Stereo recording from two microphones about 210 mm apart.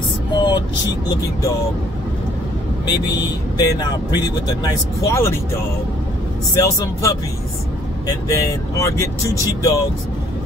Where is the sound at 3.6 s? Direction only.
20° left (ahead or behind).